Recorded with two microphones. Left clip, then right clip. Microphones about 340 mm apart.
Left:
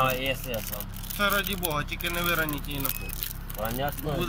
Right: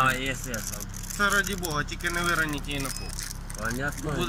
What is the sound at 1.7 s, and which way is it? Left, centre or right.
Speech, centre.